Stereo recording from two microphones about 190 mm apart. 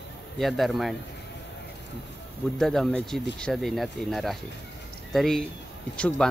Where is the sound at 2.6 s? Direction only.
5° left (ahead or behind).